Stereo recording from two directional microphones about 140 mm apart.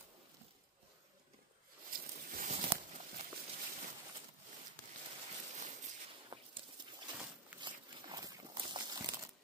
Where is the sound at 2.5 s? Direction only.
50° right (ahead or behind).